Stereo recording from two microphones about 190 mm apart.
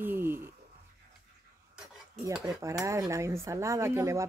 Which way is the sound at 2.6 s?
15° right (ahead or behind).